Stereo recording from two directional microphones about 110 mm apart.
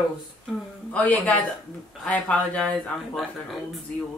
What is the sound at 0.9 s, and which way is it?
Speech, 10° left (ahead or behind).